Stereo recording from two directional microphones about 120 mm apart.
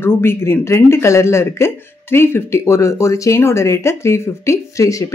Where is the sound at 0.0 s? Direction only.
20° left (ahead or behind).